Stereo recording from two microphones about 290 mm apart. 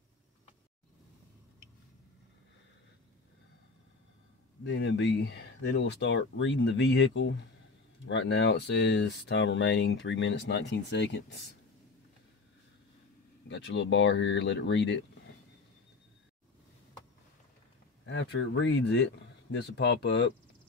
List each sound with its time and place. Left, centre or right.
4.6 s speech: left
13.5 s speech: left
18.0 s speech: left